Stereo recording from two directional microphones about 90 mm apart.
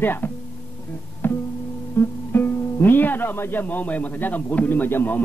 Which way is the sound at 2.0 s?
20° left (ahead or behind).